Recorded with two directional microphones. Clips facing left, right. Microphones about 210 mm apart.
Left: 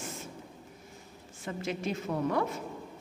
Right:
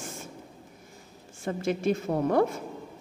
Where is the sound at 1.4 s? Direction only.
50° right (ahead or behind).